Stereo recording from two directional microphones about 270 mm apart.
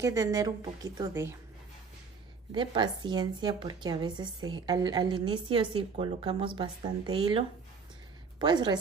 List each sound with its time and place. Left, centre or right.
0.0 s a woman's voice: centre
2.5 s a woman's voice: centre
8.4 s a woman's voice: centre